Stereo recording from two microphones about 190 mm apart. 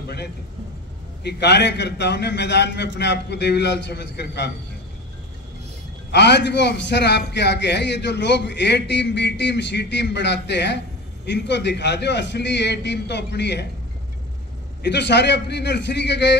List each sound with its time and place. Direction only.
1.2 s a man's voice: 60° left (ahead or behind)
6.1 s a man's voice: 65° left (ahead or behind)
14.8 s a man's voice: 65° left (ahead or behind)